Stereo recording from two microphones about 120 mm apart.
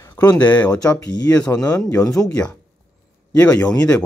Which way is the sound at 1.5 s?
30° left (ahead or behind).